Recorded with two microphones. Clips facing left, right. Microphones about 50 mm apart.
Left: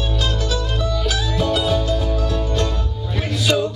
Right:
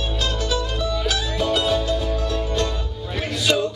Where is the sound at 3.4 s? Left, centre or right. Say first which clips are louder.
Left 1 dB; centre.